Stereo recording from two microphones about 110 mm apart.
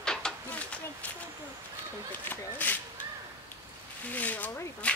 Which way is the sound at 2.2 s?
15° left (ahead or behind).